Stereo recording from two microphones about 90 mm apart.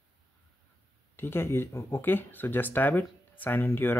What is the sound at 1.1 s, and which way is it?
Speech, 25° left (ahead or behind).